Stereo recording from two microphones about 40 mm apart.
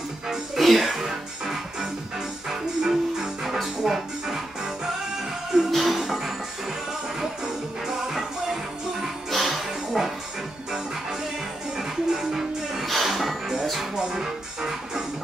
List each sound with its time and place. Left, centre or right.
0.6 s music: centre
5.7 s music: centre
9.3 s music: centre
11.7 s music: centre
12.8 s music: centre
13.9 s music: centre